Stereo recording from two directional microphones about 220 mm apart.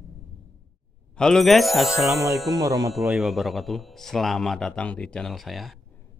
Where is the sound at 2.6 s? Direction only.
15° right (ahead or behind).